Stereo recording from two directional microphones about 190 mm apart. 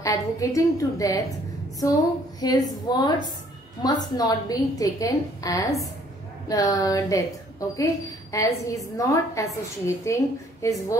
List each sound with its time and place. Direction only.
0.0 s a woman's voice: 15° left (ahead or behind)
2.4 s a woman's voice: 20° left (ahead or behind)